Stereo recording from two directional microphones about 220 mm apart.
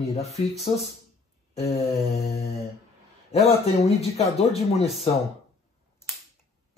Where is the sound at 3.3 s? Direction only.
30° left (ahead or behind).